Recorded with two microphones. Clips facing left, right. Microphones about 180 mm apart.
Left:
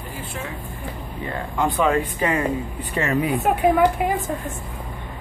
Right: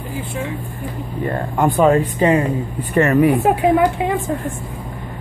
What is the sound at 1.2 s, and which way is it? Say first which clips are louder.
Speech: right 6 dB; 45° right (ahead or behind).